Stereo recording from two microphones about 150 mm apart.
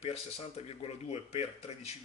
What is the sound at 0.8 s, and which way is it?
Speech, 45° left (ahead or behind).